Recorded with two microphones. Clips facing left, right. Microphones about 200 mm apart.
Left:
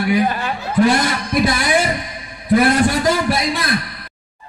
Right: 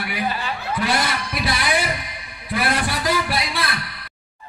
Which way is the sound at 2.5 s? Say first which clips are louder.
Left 9 dB; 45° left (ahead or behind).